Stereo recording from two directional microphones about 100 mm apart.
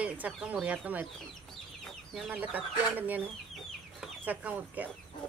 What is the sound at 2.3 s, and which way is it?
Speech, 15° right (ahead or behind).